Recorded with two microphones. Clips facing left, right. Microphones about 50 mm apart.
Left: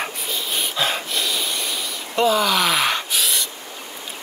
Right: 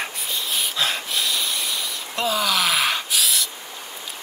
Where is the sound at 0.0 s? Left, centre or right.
Centre.